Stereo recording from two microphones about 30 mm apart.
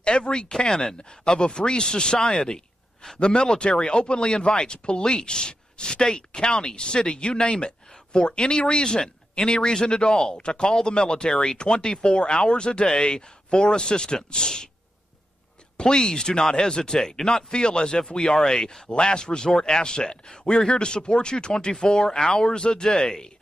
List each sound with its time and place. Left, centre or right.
0.0 s speech: left; by 0.9 s centre
1.4 s speech: left
2.4 s a sound: left
3.2 s speech: left
11.5 s speech: left
15.8 s speech: left